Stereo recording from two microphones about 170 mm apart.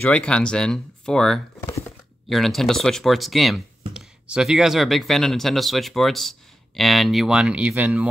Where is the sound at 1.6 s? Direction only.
20° left (ahead or behind).